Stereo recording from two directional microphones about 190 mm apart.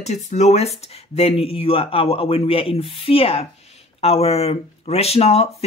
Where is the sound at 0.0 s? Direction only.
35° left (ahead or behind).